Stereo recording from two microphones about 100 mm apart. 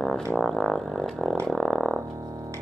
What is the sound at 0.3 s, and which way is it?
Music, 5° left (ahead or behind).